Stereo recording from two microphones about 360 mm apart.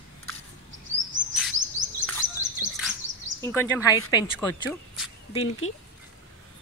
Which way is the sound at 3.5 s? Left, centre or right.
Centre.